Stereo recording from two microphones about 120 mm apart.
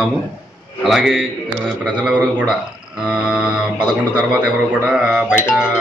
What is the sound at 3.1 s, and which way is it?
Mantra, 5° right (ahead or behind).